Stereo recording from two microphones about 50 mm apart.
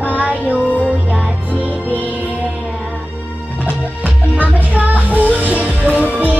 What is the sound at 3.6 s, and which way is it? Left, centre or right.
Music, right.